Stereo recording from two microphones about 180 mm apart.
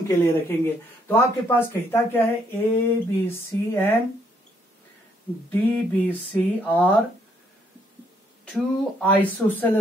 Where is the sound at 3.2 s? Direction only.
10° left (ahead or behind).